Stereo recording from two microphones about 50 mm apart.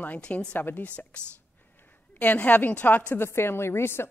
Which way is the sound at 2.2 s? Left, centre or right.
Left.